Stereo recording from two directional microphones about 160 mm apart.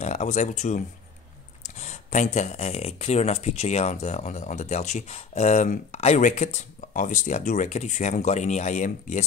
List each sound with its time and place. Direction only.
0.0 s speech: 45° left (ahead or behind)